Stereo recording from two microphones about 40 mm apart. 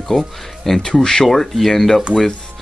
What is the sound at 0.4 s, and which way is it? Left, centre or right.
Speech, centre.